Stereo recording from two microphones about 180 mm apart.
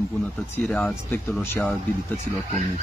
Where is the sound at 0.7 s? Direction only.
5° left (ahead or behind).